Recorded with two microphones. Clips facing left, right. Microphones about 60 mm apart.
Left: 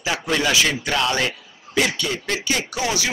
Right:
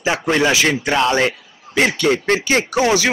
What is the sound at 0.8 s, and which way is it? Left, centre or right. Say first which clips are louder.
Speech: right 5 dB; right.